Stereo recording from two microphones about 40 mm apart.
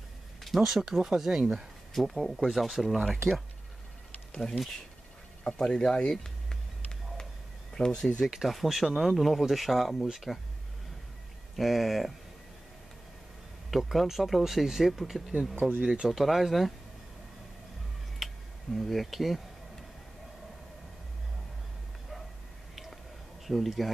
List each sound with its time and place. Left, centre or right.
0.6 s speech: centre
4.3 s speech: centre
7.7 s speech: centre
8.5 s speech: centre
11.5 s speech: centre
13.7 s speech: centre
15.8 s speech: centre
16.1 s speech: centre
18.2 s a sound: centre
23.4 s speech: centre